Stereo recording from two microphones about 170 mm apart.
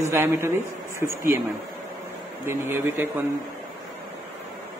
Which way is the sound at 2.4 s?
15° right (ahead or behind).